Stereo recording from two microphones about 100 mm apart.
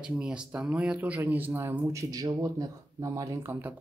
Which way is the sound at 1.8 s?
35° right (ahead or behind).